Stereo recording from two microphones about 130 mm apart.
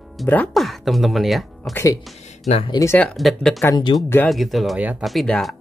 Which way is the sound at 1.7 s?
25° left (ahead or behind).